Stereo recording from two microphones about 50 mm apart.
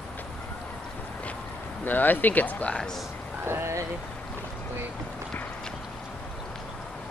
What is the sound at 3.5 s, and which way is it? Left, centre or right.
Speech, right.